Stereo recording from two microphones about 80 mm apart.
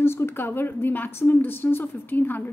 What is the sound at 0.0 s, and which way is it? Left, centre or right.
A woman's voice, left.